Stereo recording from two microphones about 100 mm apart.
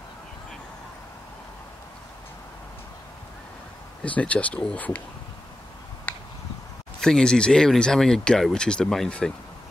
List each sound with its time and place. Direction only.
4.0 s speech: 15° left (ahead or behind)
6.1 s a sound: 15° left (ahead or behind)
7.0 s speech: 5° left (ahead or behind)